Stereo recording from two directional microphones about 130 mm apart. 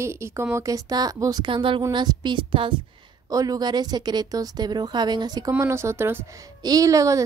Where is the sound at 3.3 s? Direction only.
30° right (ahead or behind).